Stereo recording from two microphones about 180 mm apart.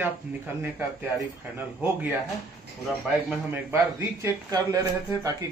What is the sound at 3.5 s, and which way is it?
Speech, 15° right (ahead or behind).